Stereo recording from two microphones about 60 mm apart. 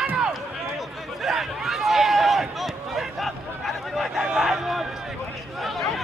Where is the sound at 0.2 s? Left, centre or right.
Centre.